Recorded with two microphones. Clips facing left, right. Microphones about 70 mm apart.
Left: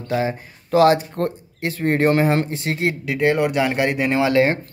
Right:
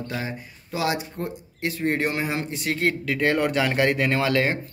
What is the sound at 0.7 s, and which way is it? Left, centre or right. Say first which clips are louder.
Speech: left 11 dB; left.